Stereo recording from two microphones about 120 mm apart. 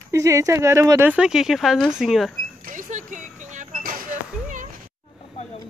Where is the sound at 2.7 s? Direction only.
90° right.